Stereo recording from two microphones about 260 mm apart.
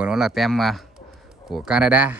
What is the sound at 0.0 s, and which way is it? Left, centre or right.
Speech, centre.